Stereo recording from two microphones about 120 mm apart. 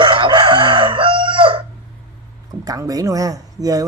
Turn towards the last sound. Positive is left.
turn(degrees=-30)  # may be behind; listen again after turning